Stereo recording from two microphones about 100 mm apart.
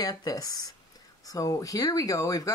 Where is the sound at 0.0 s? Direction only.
40° left (ahead or behind).